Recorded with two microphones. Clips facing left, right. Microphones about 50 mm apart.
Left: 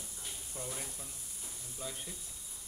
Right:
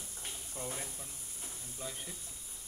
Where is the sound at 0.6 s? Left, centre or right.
Centre.